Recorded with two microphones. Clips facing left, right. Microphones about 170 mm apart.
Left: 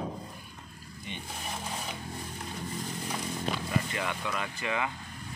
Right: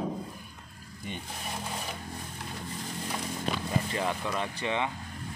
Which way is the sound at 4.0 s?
30° right (ahead or behind).